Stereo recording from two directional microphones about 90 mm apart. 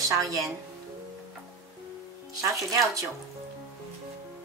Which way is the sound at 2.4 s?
35° right (ahead or behind).